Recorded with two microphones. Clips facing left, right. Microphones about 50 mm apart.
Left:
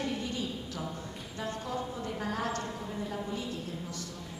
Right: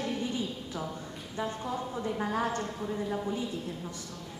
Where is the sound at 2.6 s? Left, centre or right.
Centre.